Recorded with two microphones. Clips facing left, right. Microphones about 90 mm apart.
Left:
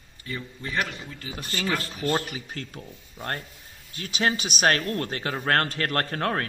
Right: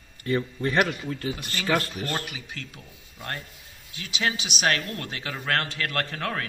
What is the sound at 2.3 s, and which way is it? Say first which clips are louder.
A man's voice: left 3 dB; 40° left (ahead or behind).